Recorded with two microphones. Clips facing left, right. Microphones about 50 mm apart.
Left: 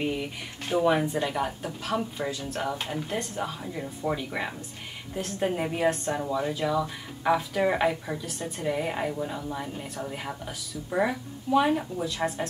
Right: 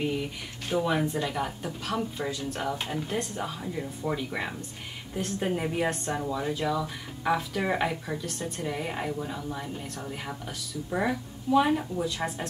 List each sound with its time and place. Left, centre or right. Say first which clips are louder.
0.0 s speech: even; centre
1.3 s a woman's voice: left 2 dB; centre